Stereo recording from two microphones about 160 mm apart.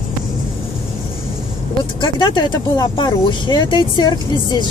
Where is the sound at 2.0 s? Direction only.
30° left (ahead or behind).